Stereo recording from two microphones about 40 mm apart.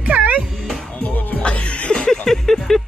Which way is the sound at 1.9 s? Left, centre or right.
Centre.